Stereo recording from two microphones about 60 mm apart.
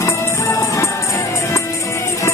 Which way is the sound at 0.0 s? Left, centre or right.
Left.